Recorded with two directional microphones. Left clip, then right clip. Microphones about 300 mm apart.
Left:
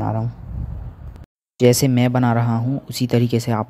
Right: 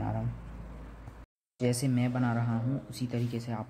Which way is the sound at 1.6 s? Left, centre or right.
Left.